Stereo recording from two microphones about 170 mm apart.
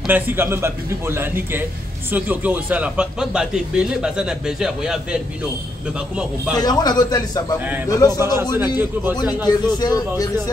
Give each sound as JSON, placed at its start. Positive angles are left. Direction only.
{"t": 0.0, "sound": "a man's voice", "side_deg": -10}
{"t": 6.5, "sound": "a man's voice", "side_deg": 25}
{"t": 8.5, "sound": "a man's voice", "side_deg": -10}
{"t": 9.5, "sound": "a man's voice", "side_deg": 25}